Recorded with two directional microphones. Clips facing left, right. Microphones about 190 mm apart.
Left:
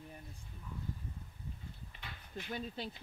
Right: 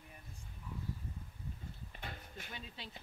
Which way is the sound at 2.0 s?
45° right (ahead or behind).